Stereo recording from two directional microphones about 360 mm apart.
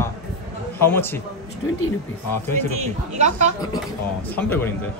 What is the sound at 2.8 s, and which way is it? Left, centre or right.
Speech, centre.